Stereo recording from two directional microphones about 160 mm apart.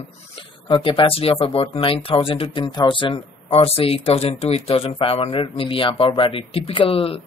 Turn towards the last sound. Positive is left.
turn(degrees=35)  # may be behind; listen again after turning